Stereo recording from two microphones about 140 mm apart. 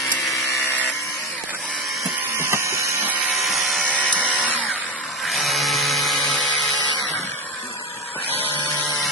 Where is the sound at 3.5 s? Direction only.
Centre (ahead or behind).